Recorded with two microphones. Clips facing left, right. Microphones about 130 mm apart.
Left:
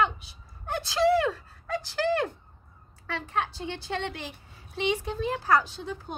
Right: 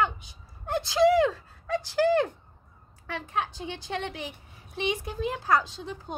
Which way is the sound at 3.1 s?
15° right (ahead or behind).